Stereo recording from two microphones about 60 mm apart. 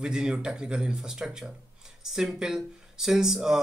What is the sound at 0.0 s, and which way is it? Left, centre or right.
Speech, centre.